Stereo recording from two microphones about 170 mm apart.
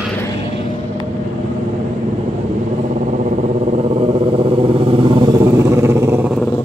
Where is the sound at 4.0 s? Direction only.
35° right (ahead or behind); by 6.3 s 15° right (ahead or behind).